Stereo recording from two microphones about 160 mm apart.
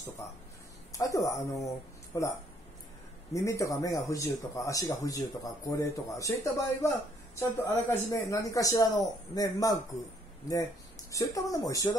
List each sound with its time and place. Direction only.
0.9 s speech: 20° left (ahead or behind)
3.3 s speech: 20° left (ahead or behind)